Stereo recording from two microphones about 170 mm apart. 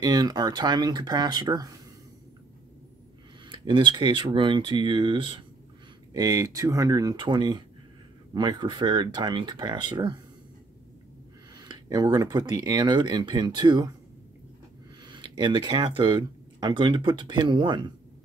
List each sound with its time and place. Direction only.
0.0 s speech: 25° right (ahead or behind)
3.4 s speech: 30° right (ahead or behind)
6.1 s speech: 20° right (ahead or behind)
11.5 s speech: 25° right (ahead or behind)
15.0 s speech: 25° right (ahead or behind)